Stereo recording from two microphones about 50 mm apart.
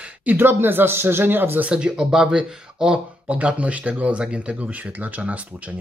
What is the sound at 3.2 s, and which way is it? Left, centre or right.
Speech, right.